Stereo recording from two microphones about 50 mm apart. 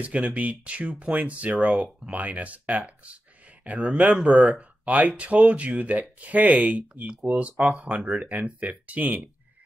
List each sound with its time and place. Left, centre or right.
0.0 s speech: right